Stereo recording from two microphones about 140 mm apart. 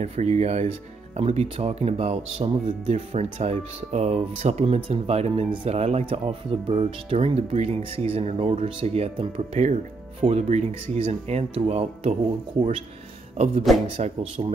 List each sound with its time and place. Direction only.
0.0 s speech: 50° right (ahead or behind)
13.8 s speech: 45° right (ahead or behind)